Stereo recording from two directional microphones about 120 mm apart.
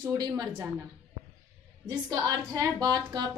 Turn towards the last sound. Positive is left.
turn(degrees=-35)  # may be behind; listen again after turning